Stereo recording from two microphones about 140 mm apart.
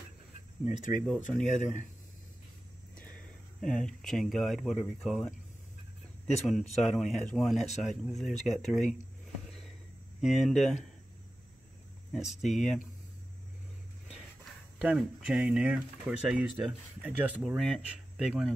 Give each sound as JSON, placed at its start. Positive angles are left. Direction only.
{"t": 0.7, "sound": "speech", "side_deg": 0}
{"t": 3.6, "sound": "speech", "side_deg": 5}
{"t": 6.4, "sound": "speech", "side_deg": 0}
{"t": 10.2, "sound": "speech", "side_deg": 0}
{"t": 12.1, "sound": "speech", "side_deg": 0}
{"t": 14.8, "sound": "speech", "side_deg": -10}